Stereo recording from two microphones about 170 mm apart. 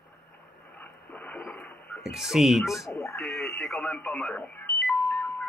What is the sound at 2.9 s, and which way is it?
Speech, 15° left (ahead or behind).